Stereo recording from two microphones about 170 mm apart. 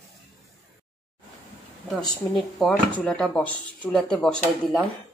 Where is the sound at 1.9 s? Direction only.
Centre (ahead or behind).